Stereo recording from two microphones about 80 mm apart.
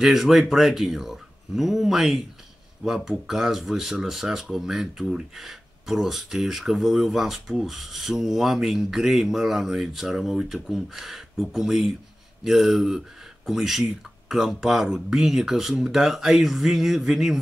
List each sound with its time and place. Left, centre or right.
0.0 s speech: centre